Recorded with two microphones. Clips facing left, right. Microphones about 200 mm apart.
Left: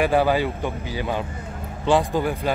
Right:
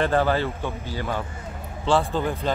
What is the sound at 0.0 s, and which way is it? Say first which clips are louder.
Speech: left 2 dB; 15° left (ahead or behind).